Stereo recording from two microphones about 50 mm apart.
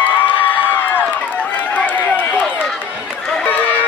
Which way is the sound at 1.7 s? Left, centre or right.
Left.